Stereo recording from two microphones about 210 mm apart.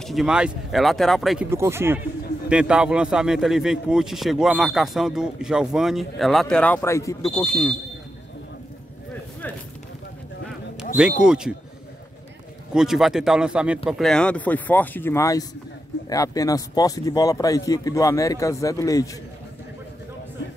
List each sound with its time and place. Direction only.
0.0 s a man's voice: centre (ahead or behind)
1.5 s a man's voice: 10° right (ahead or behind); by 7.7 s 5° left (ahead or behind)
11.0 s a man's voice: 5° right (ahead or behind)
12.7 s a man's voice: centre (ahead or behind); by 19.0 s 15° left (ahead or behind)